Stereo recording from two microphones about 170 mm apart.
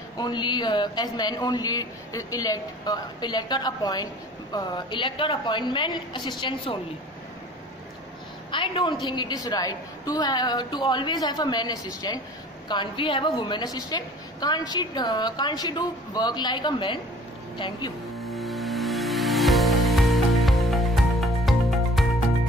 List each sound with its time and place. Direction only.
0.2 s a man's voice: 25° left (ahead or behind)
8.5 s a man's voice: 30° left (ahead or behind)
18.3 s music: centre (ahead or behind)